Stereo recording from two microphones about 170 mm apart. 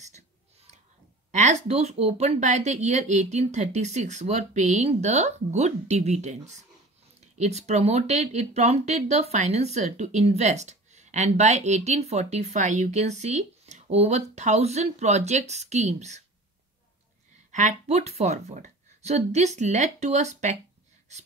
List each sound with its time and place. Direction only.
1.3 s speech: 45° right (ahead or behind)
17.5 s speech: 45° right (ahead or behind)
21.1 s a sound: 40° right (ahead or behind)